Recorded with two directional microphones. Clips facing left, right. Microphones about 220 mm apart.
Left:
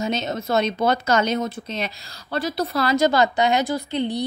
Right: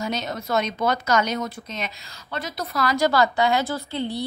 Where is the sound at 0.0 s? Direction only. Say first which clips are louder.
Left 3 dB; 25° left (ahead or behind).